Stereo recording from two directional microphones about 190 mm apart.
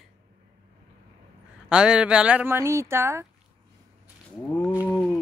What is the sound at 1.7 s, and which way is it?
Speech, 5° right (ahead or behind).